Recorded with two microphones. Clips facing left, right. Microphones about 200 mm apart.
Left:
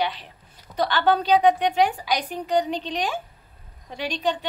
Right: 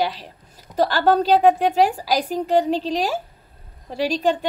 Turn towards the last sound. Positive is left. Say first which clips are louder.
# right 6 dB
turn(degrees=-40)  # may be behind; listen again after turning